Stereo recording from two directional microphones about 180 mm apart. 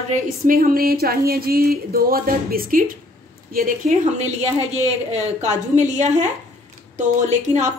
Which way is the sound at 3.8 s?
40° right (ahead or behind).